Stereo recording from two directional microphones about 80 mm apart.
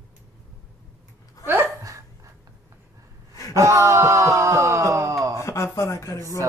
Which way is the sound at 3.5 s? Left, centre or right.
Right.